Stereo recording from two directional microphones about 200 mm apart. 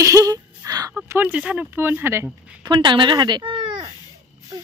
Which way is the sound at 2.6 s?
20° right (ahead or behind).